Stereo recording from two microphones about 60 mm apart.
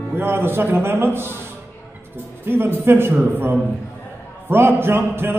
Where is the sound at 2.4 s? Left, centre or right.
Right.